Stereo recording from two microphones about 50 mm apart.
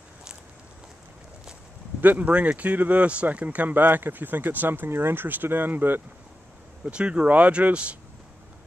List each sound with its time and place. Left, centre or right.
2.0 s speech: right
6.8 s speech: right